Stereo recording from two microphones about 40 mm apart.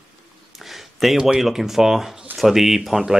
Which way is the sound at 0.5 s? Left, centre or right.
Centre.